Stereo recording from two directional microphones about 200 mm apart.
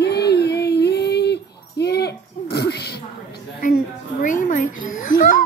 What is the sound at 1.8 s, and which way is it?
Oink, 55° left (ahead or behind).